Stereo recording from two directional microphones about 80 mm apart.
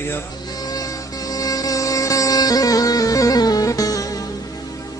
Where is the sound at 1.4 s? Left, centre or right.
Left.